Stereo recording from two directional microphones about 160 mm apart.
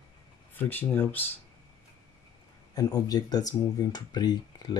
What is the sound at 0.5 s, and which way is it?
Speech, 10° left (ahead or behind).